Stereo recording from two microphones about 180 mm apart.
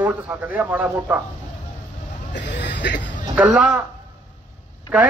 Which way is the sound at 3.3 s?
5° right (ahead or behind).